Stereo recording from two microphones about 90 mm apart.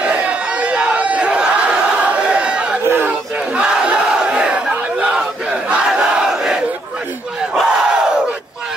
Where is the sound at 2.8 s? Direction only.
25° right (ahead or behind).